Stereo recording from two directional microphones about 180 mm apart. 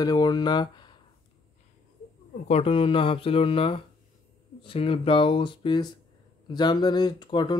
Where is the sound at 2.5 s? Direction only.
35° left (ahead or behind).